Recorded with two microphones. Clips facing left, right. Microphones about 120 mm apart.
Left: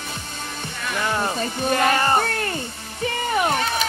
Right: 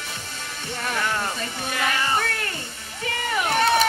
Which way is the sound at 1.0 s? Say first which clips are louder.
Left 4 dB; 25° left (ahead or behind).